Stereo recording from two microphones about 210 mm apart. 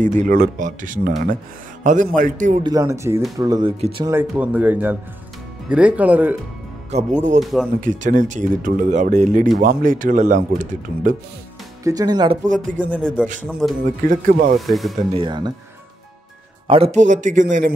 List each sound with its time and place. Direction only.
0.0 s speech: 35° right (ahead or behind)
2.6 s speech: 15° right (ahead or behind)
6.9 s speech: 30° right (ahead or behind)
11.8 s speech: 15° right (ahead or behind)
12.4 s speech: 40° right (ahead or behind)
13.0 s speech: 5° right (ahead or behind)
14.0 s speech: 40° right (ahead or behind)
14.7 s speech: centre (ahead or behind)
15.1 s speech: 20° right (ahead or behind)
16.6 s speech: 25° right (ahead or behind)